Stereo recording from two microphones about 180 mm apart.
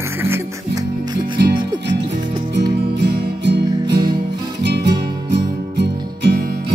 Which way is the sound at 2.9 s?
70° right (ahead or behind).